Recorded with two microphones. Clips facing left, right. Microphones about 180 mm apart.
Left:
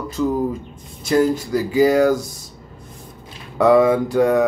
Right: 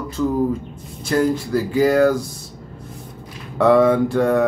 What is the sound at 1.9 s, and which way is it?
Speech, 15° left (ahead or behind).